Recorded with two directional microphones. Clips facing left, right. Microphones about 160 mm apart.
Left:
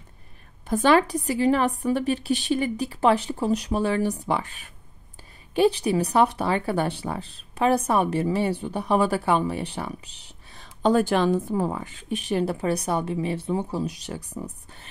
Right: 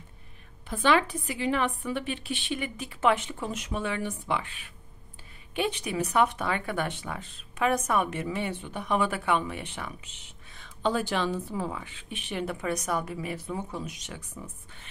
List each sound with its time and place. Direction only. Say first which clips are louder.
0.7 s speech: left 5 dB; 40° left (ahead or behind)